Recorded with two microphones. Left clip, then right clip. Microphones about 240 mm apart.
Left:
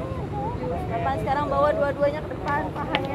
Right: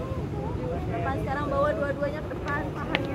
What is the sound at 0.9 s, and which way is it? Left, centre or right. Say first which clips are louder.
Vehicle: left 6 dB; left.